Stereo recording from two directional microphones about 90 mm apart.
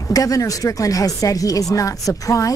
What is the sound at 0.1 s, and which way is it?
A woman's voice, 40° left (ahead or behind).